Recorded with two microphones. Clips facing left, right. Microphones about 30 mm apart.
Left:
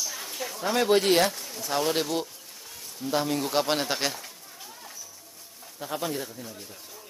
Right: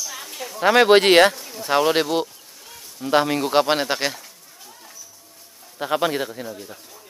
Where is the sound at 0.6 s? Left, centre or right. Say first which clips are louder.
Right 9 dB; right.